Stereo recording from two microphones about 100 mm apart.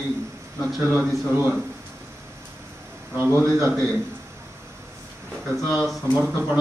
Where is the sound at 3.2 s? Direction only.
30° right (ahead or behind).